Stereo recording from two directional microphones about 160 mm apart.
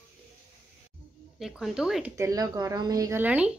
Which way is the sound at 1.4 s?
Centre (ahead or behind).